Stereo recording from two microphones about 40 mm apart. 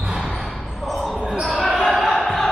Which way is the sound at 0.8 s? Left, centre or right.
Centre.